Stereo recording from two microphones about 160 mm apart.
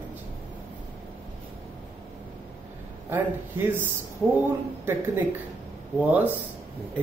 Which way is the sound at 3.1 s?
15° right (ahead or behind).